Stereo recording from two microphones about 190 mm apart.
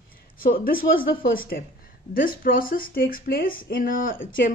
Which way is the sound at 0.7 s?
50° left (ahead or behind).